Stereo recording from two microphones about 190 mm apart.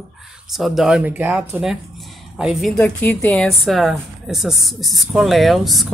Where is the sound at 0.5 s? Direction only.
Centre (ahead or behind).